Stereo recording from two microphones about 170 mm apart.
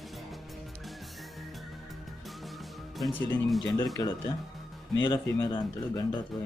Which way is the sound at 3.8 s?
25° left (ahead or behind).